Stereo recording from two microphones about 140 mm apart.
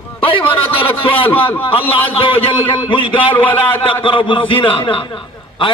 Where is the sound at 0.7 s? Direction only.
40° left (ahead or behind).